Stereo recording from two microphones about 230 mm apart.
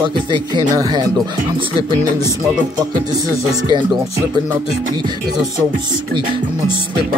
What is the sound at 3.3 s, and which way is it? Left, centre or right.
Speech, centre.